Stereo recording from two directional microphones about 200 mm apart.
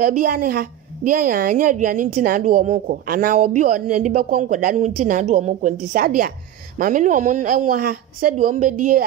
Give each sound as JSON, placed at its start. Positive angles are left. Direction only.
{"t": 0.0, "sound": "speech", "side_deg": -50}